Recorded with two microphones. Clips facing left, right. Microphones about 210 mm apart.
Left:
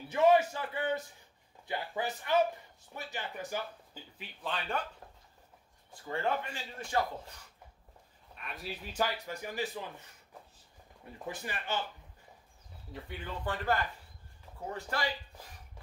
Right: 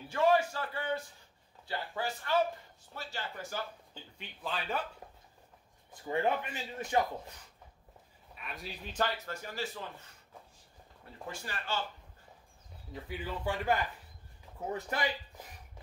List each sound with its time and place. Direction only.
0.1 s a sound: 20° left (ahead or behind)
1.7 s speech: 20° left (ahead or behind)
4.2 s speech: centre (ahead or behind)
6.0 s a man's voice: 20° right (ahead or behind)
8.4 s speech: centre (ahead or behind); by 9.8 s 15° left (ahead or behind)
11.2 s speech: 15° left (ahead or behind)
12.9 s speech: 5° right (ahead or behind)